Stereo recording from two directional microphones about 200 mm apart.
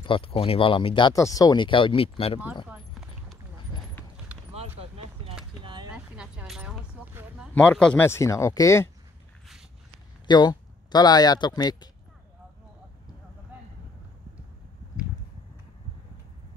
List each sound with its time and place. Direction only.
0.0 s speech: 25° left (ahead or behind)
2.7 s clip-clop: centre (ahead or behind)
4.6 s a sound: 30° right (ahead or behind)
5.6 s vehicle: 20° right (ahead or behind)
5.9 s a sound: 5° right (ahead or behind)
7.5 s speech: 5° left (ahead or behind)
10.2 s speech: 20° left (ahead or behind)